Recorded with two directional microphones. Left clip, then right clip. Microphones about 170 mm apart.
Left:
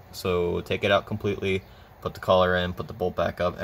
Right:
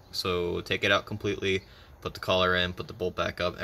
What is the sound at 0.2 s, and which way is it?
Speech, centre (ahead or behind).